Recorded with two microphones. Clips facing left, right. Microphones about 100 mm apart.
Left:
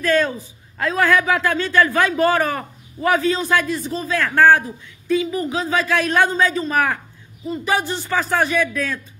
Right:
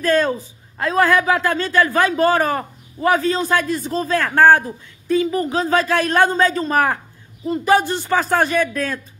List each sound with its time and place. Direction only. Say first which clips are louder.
0.0 s speech: right 1 dB; 35° right (ahead or behind)
0.7 s speech: right 1 dB; 25° right (ahead or behind)
1.9 s speech: right 1 dB; 20° right (ahead or behind)
2.1 s speech: right 1 dB; 30° right (ahead or behind)